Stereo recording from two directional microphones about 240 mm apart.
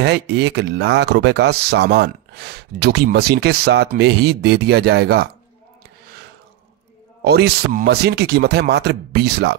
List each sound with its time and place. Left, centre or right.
0.0 s speech: right
7.2 s speech: right